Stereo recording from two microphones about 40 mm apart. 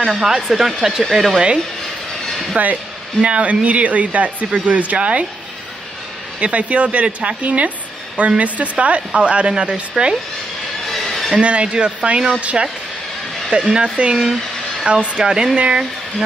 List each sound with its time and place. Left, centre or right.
0.0 s speech: centre
2.5 s speech: right
6.4 s speech: right
11.3 s speech: right
13.5 s speech: right
14.1 s a sound: centre
14.9 s speech: right